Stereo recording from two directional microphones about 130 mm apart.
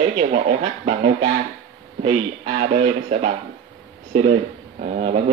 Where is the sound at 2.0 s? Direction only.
50° right (ahead or behind).